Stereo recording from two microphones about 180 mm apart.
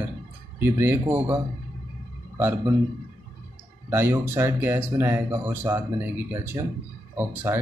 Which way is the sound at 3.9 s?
15° right (ahead or behind).